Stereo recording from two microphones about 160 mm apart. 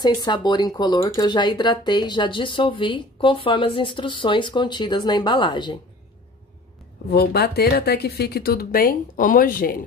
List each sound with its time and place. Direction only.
0.0 s speech: 25° left (ahead or behind)
7.1 s speech: 85° left; by 9.8 s 60° left (ahead or behind)